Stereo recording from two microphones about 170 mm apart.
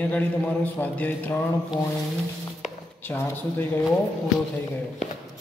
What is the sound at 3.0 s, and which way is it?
Speech, 10° left (ahead or behind).